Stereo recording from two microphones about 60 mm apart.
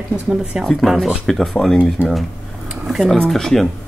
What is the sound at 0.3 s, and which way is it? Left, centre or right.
Speech, centre.